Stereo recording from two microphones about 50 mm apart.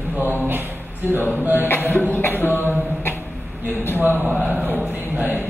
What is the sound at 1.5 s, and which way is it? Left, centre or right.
Cough, left.